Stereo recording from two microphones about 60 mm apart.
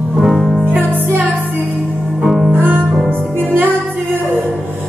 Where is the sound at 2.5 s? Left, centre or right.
Right.